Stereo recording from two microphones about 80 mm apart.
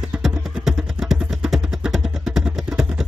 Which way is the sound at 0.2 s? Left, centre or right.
Centre.